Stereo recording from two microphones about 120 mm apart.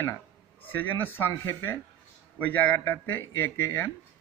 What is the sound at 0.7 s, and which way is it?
A man's voice, 15° left (ahead or behind).